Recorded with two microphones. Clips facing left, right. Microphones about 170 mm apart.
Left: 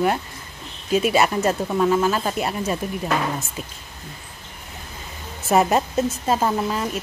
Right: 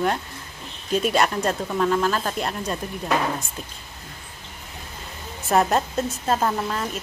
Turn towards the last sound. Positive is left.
turn(degrees=5)  # may be behind; listen again after turning